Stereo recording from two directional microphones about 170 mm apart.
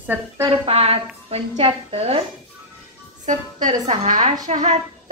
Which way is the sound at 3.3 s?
50° right (ahead or behind).